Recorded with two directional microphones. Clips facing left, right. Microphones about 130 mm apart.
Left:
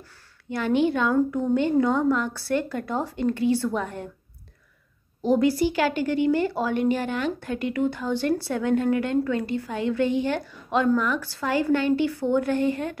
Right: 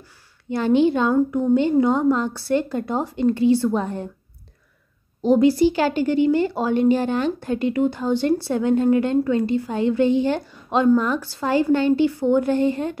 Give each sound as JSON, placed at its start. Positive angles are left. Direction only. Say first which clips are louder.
{"t": 0.5, "sound": "speech", "louder": "right 5 dB", "side_deg": -25}
{"t": 5.2, "sound": "speech", "louder": "right 5 dB", "side_deg": -20}